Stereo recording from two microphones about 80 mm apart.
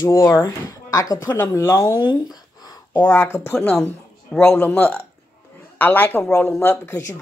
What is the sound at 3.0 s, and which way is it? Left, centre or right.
Speech, left.